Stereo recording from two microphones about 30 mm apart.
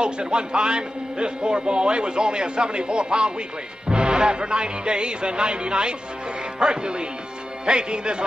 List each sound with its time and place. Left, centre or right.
0.0 s a man's voice: right